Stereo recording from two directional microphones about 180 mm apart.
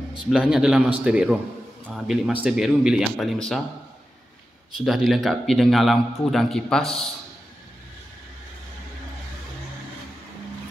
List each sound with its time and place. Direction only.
0.3 s a man's voice: 5° right (ahead or behind)
4.7 s a man's voice: centre (ahead or behind)